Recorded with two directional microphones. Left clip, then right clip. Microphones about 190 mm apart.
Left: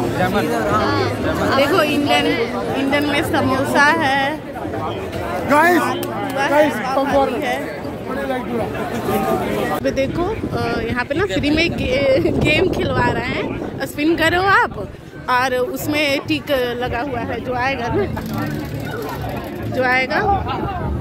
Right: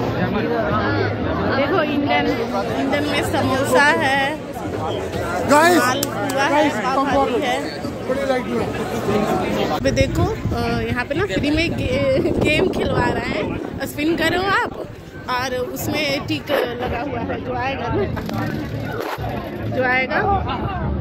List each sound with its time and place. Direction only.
0.8 s music: 35° left (ahead or behind)
1.6 s speech: 5° left (ahead or behind)
2.9 s speech: 20° left (ahead or behind)
5.5 s speech: 10° right (ahead or behind)
9.8 s speech: 10° left (ahead or behind); by 12.4 s 30° left (ahead or behind)
12.4 s speech: 15° left (ahead or behind)
14.0 s a woman's voice: 30° left (ahead or behind)
19.8 s speech: 25° left (ahead or behind)